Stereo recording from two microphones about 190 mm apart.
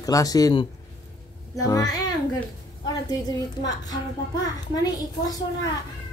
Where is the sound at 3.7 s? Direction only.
20° left (ahead or behind).